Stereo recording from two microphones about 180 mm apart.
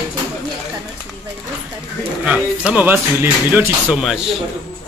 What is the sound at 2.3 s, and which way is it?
Speech, 5° right (ahead or behind).